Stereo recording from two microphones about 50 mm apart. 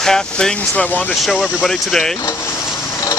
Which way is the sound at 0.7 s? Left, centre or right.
Left.